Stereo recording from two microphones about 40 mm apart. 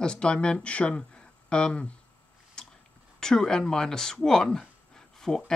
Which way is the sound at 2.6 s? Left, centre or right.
Left.